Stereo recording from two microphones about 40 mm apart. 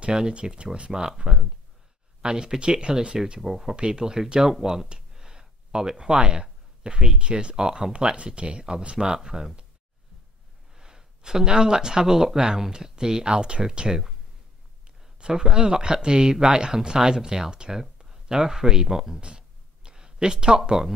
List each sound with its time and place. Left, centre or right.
0.3 s speech: right
3.3 s speech: centre
3.7 s speech: right
4.8 s a sound: centre
7.2 s speech: right
10.7 s speech: centre
15.1 s speech: right
19.2 s a sound: right